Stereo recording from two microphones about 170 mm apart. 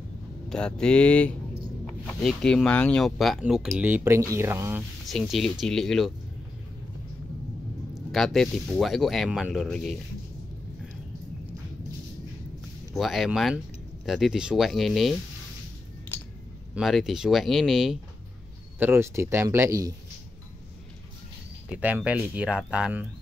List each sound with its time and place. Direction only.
0.5 s speech: 5° left (ahead or behind); by 4.8 s 15° right (ahead or behind)
5.0 s speech: centre (ahead or behind)
7.9 s speech: centre (ahead or behind)
12.9 s speech: centre (ahead or behind)
16.7 s speech: centre (ahead or behind)
18.8 s speech: 15° right (ahead or behind)
21.6 s speech: 10° right (ahead or behind)